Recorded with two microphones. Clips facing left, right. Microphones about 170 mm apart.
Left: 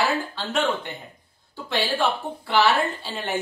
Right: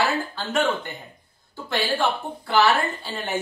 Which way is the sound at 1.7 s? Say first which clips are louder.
Even; centre (ahead or behind).